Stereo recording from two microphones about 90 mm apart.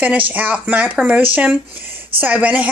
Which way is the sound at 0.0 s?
15° right (ahead or behind).